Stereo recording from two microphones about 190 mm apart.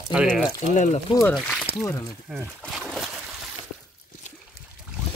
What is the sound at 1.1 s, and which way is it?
Speech, 15° left (ahead or behind).